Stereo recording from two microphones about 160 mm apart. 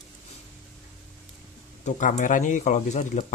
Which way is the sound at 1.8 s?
50° left (ahead or behind).